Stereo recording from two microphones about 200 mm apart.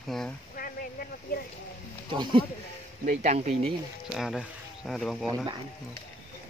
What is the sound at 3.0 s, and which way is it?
Speech, 35° right (ahead or behind).